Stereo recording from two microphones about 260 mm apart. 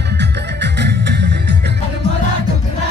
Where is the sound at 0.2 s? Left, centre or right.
Right.